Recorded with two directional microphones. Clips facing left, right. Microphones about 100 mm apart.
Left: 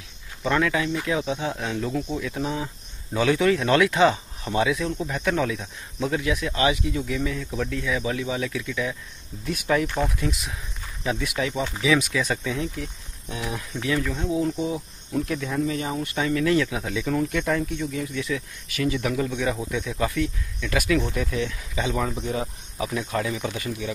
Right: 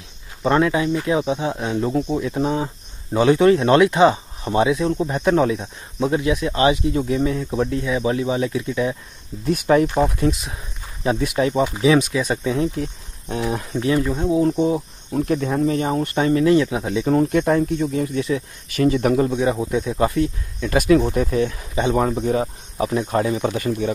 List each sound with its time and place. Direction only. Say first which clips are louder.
0.4 s speech: right 5 dB; 30° right (ahead or behind)
12.4 s speech: right 7 dB; 35° right (ahead or behind)